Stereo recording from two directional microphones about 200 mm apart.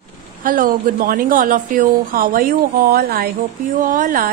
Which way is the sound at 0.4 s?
45° right (ahead or behind).